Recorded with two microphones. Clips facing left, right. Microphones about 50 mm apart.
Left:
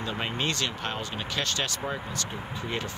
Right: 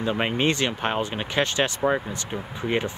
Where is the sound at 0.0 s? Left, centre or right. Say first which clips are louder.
Right 7 dB; right.